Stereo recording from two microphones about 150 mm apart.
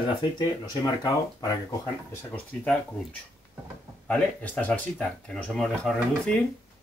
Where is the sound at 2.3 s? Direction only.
10° left (ahead or behind).